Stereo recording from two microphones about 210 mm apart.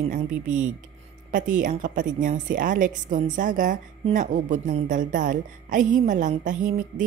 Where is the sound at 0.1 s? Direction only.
40° right (ahead or behind).